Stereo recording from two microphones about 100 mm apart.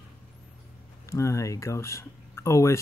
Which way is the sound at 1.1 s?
30° left (ahead or behind).